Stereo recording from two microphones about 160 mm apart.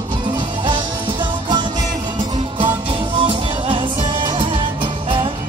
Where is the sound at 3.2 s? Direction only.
30° right (ahead or behind).